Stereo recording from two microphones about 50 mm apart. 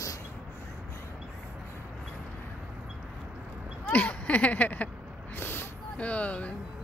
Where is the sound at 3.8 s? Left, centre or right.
Left.